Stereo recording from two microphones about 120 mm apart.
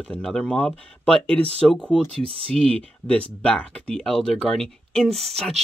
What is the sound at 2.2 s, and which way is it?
Speech, 50° right (ahead or behind).